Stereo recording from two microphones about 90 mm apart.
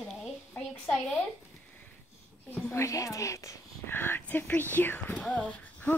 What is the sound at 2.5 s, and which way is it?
Speech, 30° left (ahead or behind).